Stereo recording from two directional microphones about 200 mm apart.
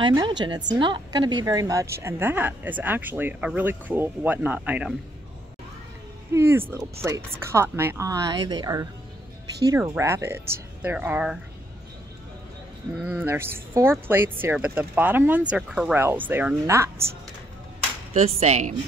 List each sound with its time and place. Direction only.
0.0 s a woman's voice: 25° right (ahead or behind); by 4.9 s 5° right (ahead or behind)
6.3 s a woman's voice: 10° right (ahead or behind)
13.1 s a woman's voice: 10° right (ahead or behind)
18.1 s speech: 30° right (ahead or behind)